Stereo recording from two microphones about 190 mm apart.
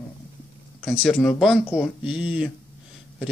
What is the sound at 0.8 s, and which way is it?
Speech, centre (ahead or behind).